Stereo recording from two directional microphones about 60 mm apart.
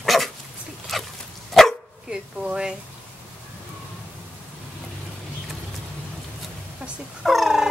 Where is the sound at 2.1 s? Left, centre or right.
Centre.